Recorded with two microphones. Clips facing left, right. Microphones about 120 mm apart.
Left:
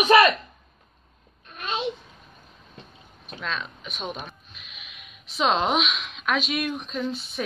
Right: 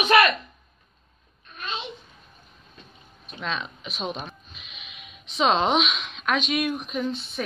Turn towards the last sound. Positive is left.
turn(degrees=0)  # may be behind; listen again after turning